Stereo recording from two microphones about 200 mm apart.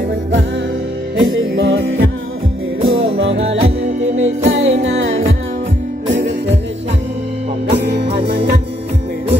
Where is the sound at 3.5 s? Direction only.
30° right (ahead or behind).